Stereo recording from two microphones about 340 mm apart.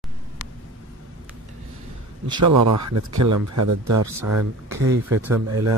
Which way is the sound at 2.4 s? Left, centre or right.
Right.